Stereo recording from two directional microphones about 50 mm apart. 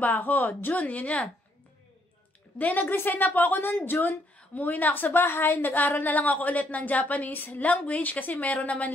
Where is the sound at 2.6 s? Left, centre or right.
Left.